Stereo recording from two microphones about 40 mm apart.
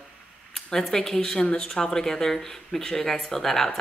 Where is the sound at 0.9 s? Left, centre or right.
Centre.